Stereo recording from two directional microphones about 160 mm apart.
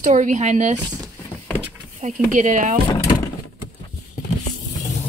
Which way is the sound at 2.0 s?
50° right (ahead or behind).